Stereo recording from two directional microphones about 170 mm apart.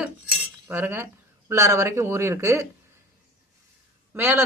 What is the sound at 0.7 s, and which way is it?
Speech, 15° right (ahead or behind).